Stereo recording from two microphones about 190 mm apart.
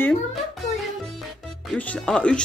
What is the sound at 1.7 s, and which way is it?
Speech, 5° left (ahead or behind).